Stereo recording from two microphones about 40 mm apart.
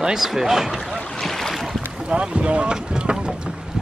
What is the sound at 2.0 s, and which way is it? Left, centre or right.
Speech, right.